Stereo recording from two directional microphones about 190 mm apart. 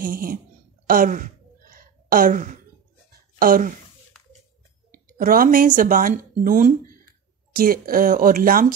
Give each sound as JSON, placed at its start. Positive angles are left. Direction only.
{"t": 0.0, "sound": "speech", "side_deg": -45}
{"t": 0.8, "sound": "sigh", "side_deg": -45}
{"t": 3.3, "sound": "speech", "side_deg": -45}
{"t": 4.9, "sound": "speech", "side_deg": -45}